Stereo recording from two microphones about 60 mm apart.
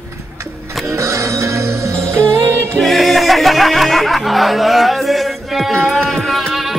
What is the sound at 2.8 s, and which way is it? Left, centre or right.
Music, centre.